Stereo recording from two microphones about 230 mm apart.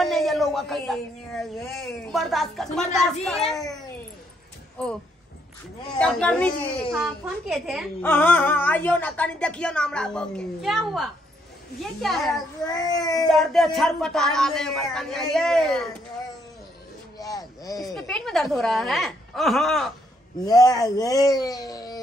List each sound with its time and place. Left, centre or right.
0.0 s speech: centre
4.8 s speech: centre
5.9 s speech: centre
8.0 s speech: centre
12.7 s speech: centre
13.3 s speech: centre
17.2 s a sound: centre
17.9 s speech: centre
20.3 s speech: centre